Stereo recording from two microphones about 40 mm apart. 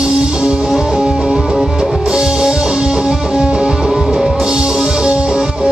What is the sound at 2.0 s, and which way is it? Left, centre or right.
Music, centre.